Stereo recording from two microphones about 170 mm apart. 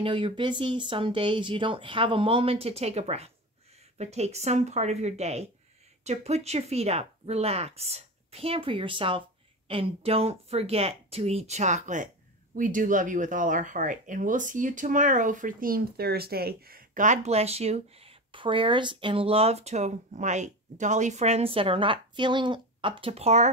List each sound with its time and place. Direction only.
0.0 s speech: 30° right (ahead or behind)